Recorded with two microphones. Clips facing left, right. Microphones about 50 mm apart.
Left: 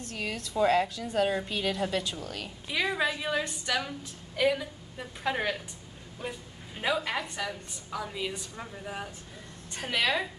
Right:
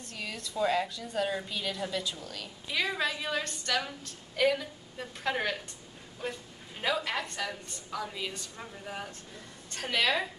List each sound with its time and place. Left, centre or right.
0.6 s a woman's voice: left
2.7 s a woman's voice: centre